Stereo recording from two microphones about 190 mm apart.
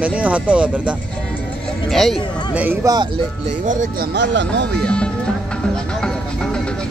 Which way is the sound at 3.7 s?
40° right (ahead or behind).